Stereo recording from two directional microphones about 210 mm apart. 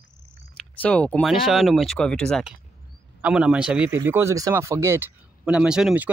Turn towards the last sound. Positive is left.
turn(degrees=-5)  # may be behind; listen again after turning